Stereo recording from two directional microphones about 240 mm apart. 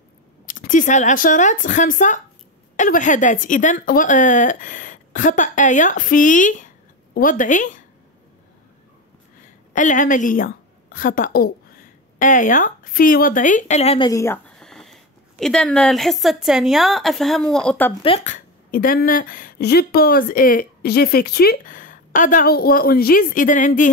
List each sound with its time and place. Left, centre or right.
0.5 s a woman's voice: left
9.8 s a woman's voice: left; by 17.9 s centre
18.0 s a woman's voice: left